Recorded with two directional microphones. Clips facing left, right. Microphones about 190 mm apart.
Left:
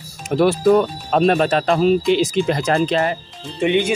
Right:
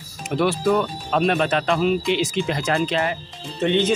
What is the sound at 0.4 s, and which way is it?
Speech, 40° left (ahead or behind).